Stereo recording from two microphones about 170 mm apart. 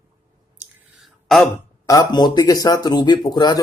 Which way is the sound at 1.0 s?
Centre (ahead or behind).